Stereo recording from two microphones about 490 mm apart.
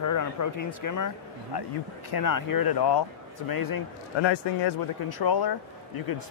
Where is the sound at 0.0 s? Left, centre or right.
Left.